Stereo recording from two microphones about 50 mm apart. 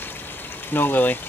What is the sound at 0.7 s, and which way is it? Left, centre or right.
Speech, left.